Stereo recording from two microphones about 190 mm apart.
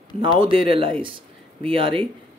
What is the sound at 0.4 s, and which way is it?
Speech, 30° right (ahead or behind).